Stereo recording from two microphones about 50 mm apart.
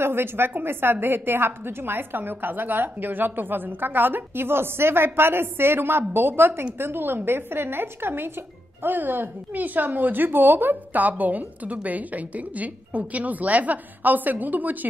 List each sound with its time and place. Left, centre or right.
0.0 s a woman's voice: right